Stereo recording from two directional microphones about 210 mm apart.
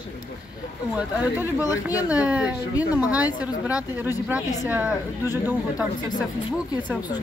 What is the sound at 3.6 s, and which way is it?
Speech, 5° right (ahead or behind).